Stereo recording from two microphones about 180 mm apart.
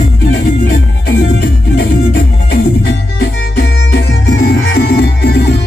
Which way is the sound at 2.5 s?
60° left (ahead or behind).